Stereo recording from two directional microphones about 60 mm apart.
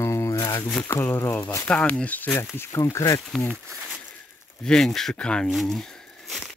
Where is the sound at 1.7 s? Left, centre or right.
Left.